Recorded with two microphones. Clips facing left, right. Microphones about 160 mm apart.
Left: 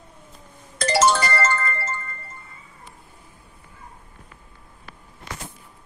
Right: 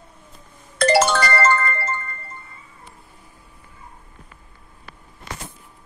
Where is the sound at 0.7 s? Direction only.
60° right (ahead or behind).